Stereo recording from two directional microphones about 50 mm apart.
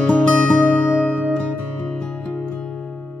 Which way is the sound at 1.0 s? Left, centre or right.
Right.